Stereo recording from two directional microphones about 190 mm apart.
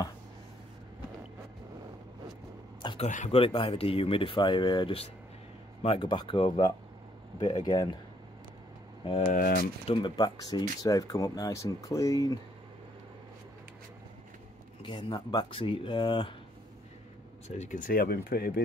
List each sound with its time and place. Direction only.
2.8 s a sound: 25° left (ahead or behind)
3.3 s speech: 30° left (ahead or behind)
9.0 s speech: 30° left (ahead or behind)
9.3 s speech: 50° left (ahead or behind)
9.8 s speech: 20° left (ahead or behind)
14.8 s speech: 25° left (ahead or behind)
17.5 s speech: 40° left (ahead or behind); by 18.6 s 55° left (ahead or behind)